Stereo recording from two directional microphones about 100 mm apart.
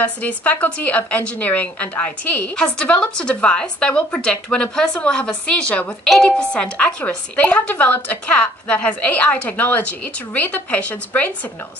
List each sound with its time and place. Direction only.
0.0 s a woman's voice: 15° left (ahead or behind)